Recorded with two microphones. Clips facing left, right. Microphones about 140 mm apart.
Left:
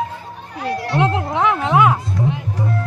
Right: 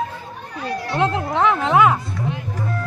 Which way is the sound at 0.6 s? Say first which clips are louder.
Left 3 dB; 70° left (ahead or behind).